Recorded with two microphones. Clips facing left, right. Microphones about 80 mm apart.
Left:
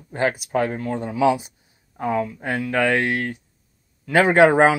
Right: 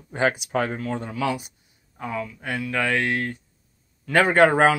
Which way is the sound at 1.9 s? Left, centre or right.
Left.